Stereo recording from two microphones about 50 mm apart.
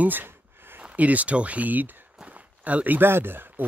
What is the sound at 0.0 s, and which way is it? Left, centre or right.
Speech, right.